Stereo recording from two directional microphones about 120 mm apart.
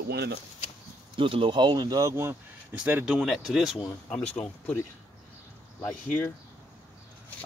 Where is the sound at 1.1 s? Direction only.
45° right (ahead or behind); by 2.3 s 25° right (ahead or behind).